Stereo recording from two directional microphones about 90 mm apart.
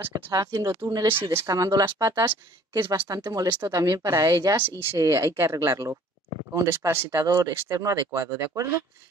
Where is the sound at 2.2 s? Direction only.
25° right (ahead or behind).